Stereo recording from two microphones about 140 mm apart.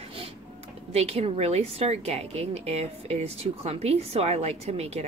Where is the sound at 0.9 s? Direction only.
50° right (ahead or behind).